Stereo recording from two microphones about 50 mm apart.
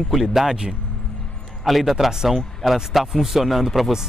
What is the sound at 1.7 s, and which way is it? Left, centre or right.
A man's voice, centre.